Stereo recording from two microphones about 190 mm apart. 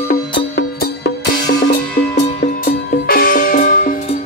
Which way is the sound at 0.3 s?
60° left (ahead or behind).